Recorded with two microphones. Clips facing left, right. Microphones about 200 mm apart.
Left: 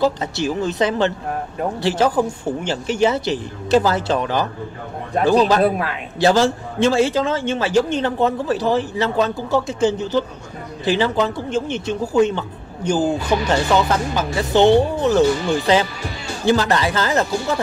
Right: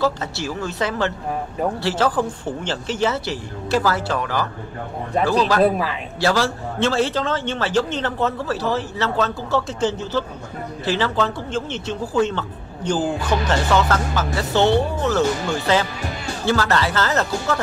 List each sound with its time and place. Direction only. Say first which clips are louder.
0.0 s speech: left 3 dB; 20° left (ahead or behind)
5.6 s a man's voice: even; centre (ahead or behind)
6.1 s speech: left 5 dB; 20° left (ahead or behind)